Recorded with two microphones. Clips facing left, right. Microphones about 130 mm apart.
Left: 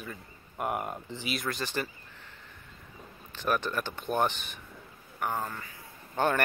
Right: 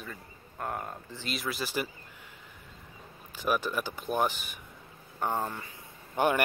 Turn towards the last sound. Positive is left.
turn(degrees=-15)  # may be behind; listen again after turning